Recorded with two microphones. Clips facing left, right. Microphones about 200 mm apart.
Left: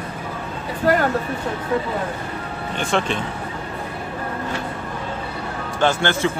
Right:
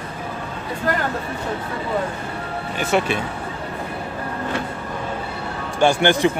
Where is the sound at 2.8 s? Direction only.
10° right (ahead or behind).